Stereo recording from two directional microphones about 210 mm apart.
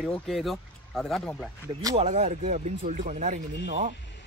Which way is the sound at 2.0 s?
30° right (ahead or behind).